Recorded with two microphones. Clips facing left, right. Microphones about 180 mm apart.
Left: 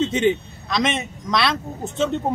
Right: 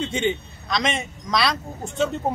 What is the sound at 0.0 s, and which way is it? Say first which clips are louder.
A man's voice: left 5 dB; 5° left (ahead or behind).